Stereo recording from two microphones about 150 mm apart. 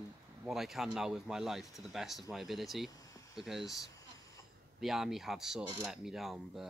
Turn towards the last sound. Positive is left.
turn(degrees=0)  # may be behind; listen again after turning